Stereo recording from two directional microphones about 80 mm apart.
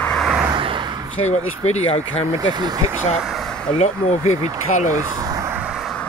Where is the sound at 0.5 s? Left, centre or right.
Right.